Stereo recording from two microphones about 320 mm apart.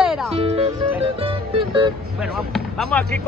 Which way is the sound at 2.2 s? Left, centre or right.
Centre.